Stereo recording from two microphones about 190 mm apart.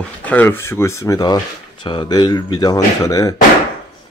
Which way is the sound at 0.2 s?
10° left (ahead or behind).